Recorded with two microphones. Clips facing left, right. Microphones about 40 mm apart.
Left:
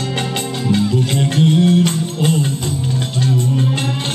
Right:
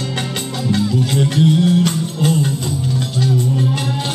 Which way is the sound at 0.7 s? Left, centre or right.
Centre.